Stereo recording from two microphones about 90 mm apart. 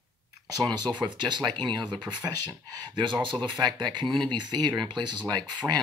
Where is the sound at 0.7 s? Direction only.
55° right (ahead or behind).